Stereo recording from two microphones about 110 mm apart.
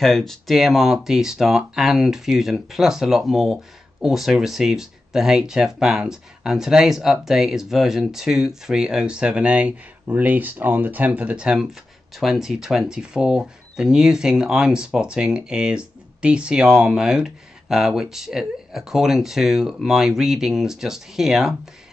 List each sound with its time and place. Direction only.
0.0 s speech: centre (ahead or behind)